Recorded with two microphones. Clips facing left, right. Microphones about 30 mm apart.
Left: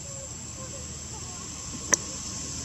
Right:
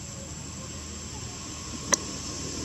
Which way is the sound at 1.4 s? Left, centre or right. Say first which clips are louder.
Right 1 dB; centre.